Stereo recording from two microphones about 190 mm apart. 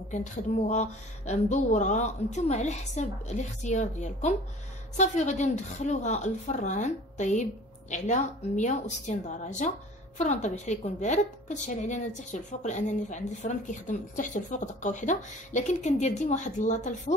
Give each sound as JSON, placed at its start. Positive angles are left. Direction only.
{"t": 0.1, "sound": "a woman's voice", "side_deg": 40}